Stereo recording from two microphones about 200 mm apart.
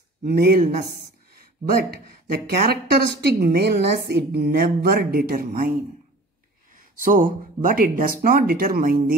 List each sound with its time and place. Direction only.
0.2 s a woman's voice: 50° right (ahead or behind)